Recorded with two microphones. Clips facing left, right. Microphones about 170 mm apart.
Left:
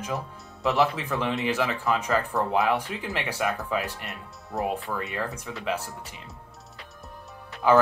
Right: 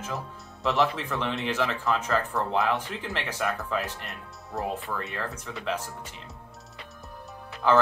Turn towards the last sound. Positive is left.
turn(degrees=15)  # may be behind; listen again after turning